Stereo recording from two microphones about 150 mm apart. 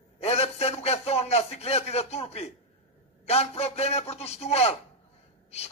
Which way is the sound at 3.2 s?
45° left (ahead or behind).